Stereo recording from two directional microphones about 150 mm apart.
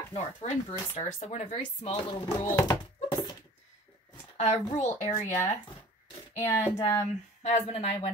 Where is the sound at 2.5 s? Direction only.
25° left (ahead or behind).